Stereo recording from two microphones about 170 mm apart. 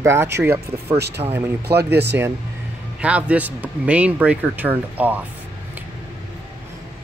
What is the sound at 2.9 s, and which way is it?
Speech, 5° right (ahead or behind).